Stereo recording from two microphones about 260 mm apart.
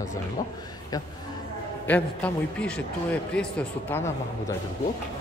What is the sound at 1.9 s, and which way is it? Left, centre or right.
A man's voice, centre.